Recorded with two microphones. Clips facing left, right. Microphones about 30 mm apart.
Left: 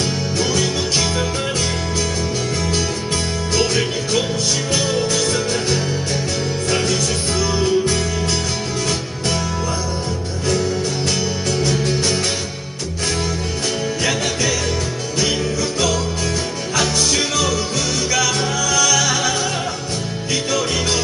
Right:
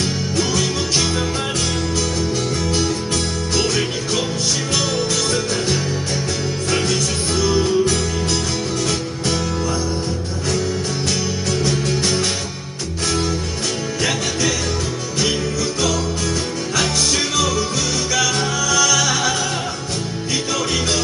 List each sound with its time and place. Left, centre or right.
5.1 s music: left
7.5 s music: left
18.1 s music: centre